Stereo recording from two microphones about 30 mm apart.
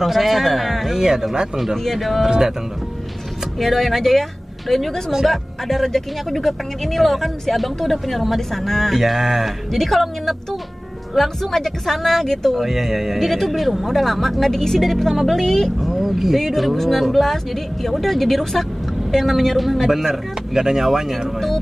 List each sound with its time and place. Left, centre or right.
0.0 s speech: centre
0.8 s speech: centre
2.0 s speech: centre
2.2 s speech: centre
3.5 s speech: centre
8.9 s speech: centre
9.7 s speech: centre
12.6 s speech: centre
15.9 s speech: centre
16.3 s speech: centre